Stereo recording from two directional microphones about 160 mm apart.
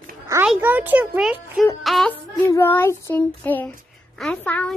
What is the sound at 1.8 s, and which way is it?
Music, centre (ahead or behind).